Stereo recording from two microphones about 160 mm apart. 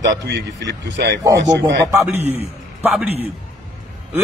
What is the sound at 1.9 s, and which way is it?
A man's voice, 15° right (ahead or behind).